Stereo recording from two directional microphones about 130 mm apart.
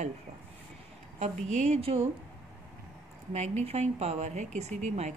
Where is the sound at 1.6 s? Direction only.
50° right (ahead or behind).